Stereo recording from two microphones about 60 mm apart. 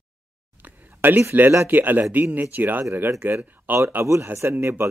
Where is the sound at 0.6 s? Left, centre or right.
Right.